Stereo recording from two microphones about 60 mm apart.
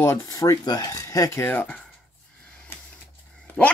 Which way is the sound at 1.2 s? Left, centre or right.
Left.